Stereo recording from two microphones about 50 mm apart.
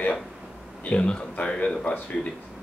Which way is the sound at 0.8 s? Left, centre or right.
Left.